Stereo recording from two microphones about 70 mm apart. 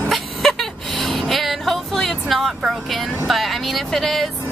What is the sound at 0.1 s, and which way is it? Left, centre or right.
Vehicle, centre.